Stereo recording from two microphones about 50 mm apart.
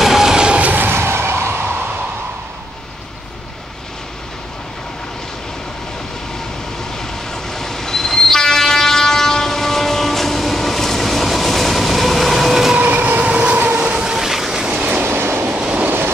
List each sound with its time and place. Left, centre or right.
0.0 s vehicle: centre
0.6 s vehicle: right
0.8 s a sound: right
7.0 s train: centre
12.7 s train: right
13.9 s train: centre
14.7 s train: right
15.0 s train: right
15.5 s train: right